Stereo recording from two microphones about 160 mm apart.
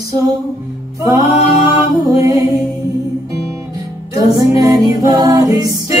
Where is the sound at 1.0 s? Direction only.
20° right (ahead or behind).